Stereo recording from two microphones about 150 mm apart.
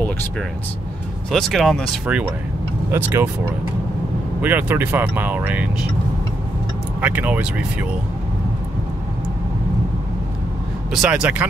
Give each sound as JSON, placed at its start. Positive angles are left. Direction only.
{"t": 1.3, "sound": "speech", "side_deg": 0}
{"t": 2.9, "sound": "speech", "side_deg": -15}
{"t": 7.0, "sound": "speech", "side_deg": -10}
{"t": 10.9, "sound": "speech", "side_deg": -5}